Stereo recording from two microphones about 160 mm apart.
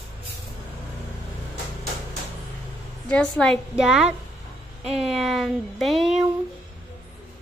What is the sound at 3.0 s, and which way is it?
Speech, 5° left (ahead or behind).